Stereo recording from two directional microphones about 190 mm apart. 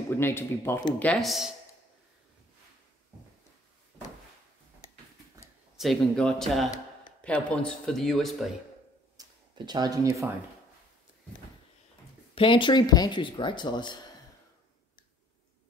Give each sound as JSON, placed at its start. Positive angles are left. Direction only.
{"t": 0.1, "sound": "a man's voice", "side_deg": 10}
{"t": 5.8, "sound": "speech", "side_deg": 0}
{"t": 9.1, "sound": "a sound", "side_deg": -20}
{"t": 12.4, "sound": "speech", "side_deg": 25}